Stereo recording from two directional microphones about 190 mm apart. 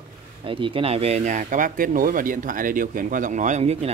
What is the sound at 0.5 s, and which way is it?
Speech, 25° right (ahead or behind).